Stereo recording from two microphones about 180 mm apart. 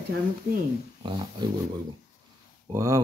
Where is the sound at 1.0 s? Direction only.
30° right (ahead or behind).